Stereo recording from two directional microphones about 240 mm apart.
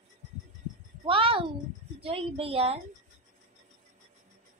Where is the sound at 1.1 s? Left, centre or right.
Right.